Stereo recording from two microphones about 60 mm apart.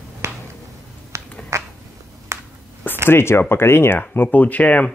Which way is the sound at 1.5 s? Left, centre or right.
Right.